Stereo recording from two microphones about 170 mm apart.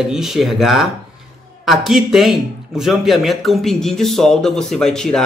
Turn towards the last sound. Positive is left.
turn(degrees=5)  # may be behind; listen again after turning